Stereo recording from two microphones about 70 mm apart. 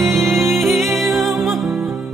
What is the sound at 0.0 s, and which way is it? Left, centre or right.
Music, centre.